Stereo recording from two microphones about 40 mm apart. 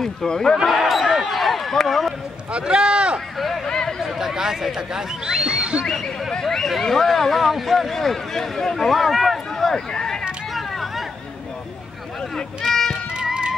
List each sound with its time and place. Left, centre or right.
0.0 s speech: centre
0.8 s basketball bounce: centre
2.6 s speech: right
3.3 s speech: centre
3.6 s a sound: centre
4.0 s speech: centre
5.9 s speech: centre
9.9 s a sound: centre
10.5 s a sound: centre
12.9 s music: centre